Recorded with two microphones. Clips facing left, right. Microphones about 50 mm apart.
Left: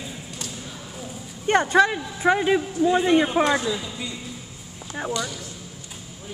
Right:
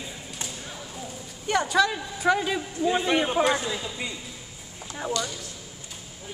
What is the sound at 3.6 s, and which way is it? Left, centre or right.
Speech, right.